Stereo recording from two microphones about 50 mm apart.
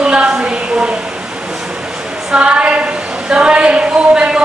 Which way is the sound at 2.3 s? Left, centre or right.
Right.